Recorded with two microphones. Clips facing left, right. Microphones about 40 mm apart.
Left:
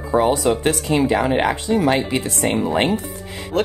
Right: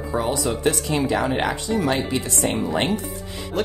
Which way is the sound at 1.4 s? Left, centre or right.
Left.